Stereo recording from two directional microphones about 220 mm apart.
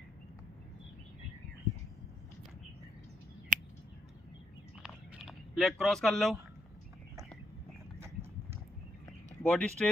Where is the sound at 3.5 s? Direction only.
35° right (ahead or behind).